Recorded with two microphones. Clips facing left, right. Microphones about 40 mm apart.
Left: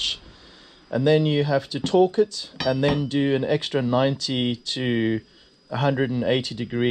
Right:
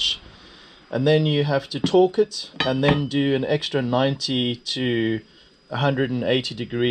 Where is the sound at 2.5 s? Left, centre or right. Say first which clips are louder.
Right 2 dB; right.